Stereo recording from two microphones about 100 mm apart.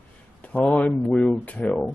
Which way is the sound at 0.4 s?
15° left (ahead or behind).